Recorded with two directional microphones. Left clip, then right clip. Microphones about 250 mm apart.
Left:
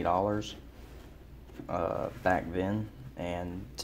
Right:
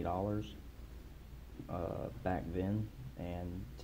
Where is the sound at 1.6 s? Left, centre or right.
Centre.